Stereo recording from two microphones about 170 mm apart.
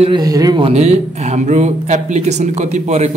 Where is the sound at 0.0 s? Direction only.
25° right (ahead or behind).